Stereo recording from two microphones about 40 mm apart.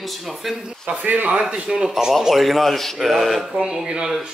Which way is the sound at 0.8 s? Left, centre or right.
Right.